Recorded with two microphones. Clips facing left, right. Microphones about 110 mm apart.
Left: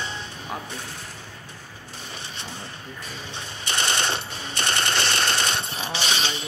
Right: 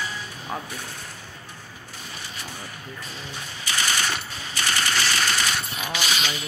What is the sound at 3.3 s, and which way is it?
Machine gun, 25° left (ahead or behind).